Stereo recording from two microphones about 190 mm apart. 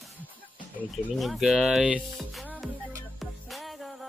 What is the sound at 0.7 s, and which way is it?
Speech, centre (ahead or behind).